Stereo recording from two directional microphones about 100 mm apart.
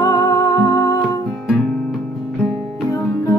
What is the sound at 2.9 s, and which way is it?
Music, 30° left (ahead or behind).